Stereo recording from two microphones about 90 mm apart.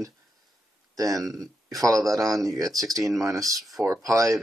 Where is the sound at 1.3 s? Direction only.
40° right (ahead or behind).